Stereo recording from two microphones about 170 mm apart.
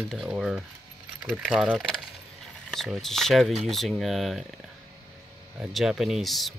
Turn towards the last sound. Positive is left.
turn(degrees=0)  # may be behind; listen again after turning